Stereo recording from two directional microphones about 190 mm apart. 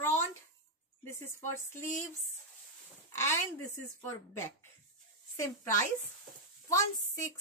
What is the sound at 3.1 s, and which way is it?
Speech, 15° left (ahead or behind).